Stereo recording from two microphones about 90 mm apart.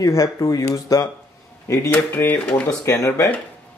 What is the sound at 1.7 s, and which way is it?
Speech, 25° left (ahead or behind).